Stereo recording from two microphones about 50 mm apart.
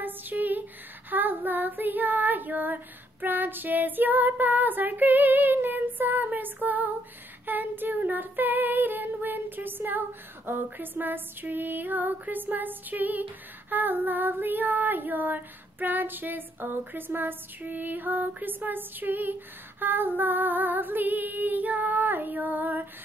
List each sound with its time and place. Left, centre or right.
0.0 s a sound: right
1.1 s child singing: right
7.4 s female singing: right